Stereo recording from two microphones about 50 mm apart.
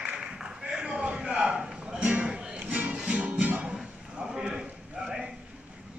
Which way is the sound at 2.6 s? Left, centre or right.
Right.